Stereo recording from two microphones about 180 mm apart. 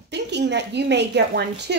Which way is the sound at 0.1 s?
70° right (ahead or behind).